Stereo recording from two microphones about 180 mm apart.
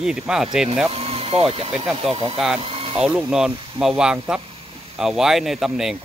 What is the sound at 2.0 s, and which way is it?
Speech, 30° right (ahead or behind).